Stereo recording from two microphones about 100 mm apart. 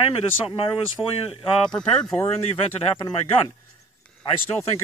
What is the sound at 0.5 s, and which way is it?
Speech, 65° left (ahead or behind).